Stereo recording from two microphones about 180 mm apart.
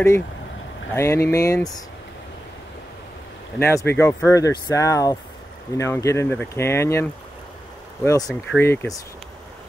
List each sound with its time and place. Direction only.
0.9 s speech: 15° left (ahead or behind)
3.5 s speech: 15° left (ahead or behind)